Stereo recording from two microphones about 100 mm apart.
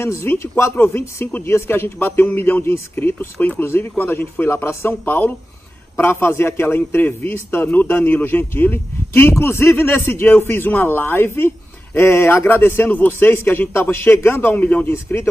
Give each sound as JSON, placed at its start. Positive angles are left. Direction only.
{"t": 0.0, "sound": "a man's voice", "side_deg": 25}